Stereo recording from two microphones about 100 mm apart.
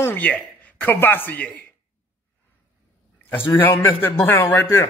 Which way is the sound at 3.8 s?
25° left (ahead or behind).